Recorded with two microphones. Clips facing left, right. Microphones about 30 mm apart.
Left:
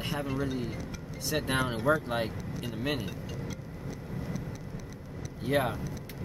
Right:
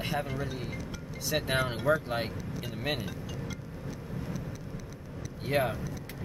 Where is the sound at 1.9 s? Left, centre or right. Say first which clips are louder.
Left 1 dB; centre.